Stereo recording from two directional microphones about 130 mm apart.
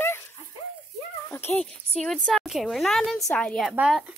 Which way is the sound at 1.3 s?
15° left (ahead or behind).